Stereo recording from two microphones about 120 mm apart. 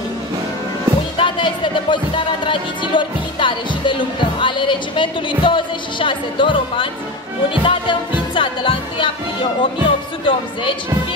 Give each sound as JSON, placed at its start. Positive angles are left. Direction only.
{"t": 1.1, "sound": "speech", "side_deg": 45}
{"t": 4.4, "sound": "music", "side_deg": 40}